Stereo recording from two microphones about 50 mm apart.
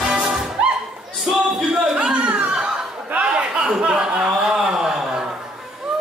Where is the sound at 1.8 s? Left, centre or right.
Right.